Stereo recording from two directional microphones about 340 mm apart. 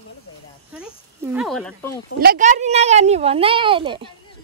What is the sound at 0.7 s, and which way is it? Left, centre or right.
Speech, centre.